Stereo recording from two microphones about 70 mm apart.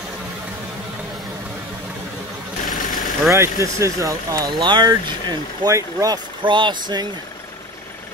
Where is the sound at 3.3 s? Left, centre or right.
Right.